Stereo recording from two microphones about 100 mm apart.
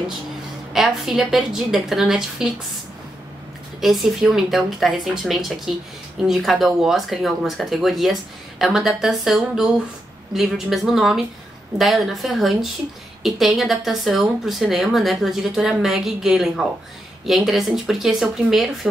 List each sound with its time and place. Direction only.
0.7 s speech: 5° right (ahead or behind)
3.8 s speech: centre (ahead or behind)